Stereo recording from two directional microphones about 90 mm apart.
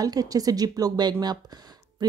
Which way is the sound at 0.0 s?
45° right (ahead or behind).